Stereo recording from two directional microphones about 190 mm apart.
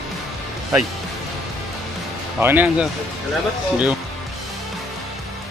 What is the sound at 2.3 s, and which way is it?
Speech, 10° right (ahead or behind).